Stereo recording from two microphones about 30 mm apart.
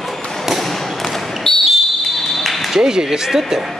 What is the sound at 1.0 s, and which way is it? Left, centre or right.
Basketball bounce, centre.